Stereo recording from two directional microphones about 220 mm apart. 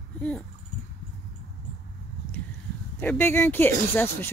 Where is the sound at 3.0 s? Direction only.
10° left (ahead or behind).